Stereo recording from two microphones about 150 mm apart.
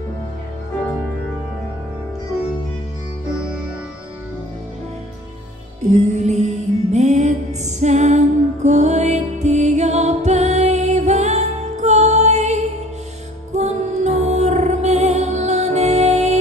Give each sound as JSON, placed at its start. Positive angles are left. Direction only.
{"t": 5.9, "sound": "music", "side_deg": -50}